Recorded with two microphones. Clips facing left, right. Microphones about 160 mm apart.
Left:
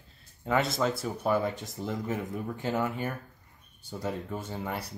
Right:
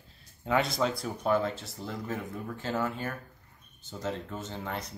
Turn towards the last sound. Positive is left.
turn(degrees=10)  # may be behind; listen again after turning